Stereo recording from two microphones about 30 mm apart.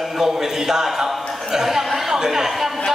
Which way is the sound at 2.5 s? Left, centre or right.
Centre.